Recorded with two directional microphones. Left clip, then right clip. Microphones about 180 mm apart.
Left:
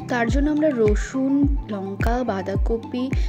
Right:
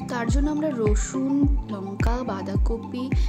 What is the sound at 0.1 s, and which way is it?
Speech, 15° left (ahead or behind).